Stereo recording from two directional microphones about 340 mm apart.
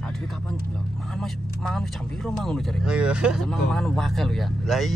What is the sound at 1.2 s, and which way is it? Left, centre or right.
Speech, centre.